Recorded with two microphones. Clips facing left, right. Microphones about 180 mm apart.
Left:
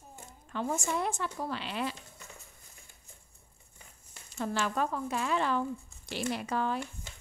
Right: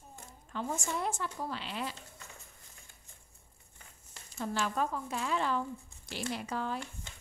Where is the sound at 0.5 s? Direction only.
70° left (ahead or behind).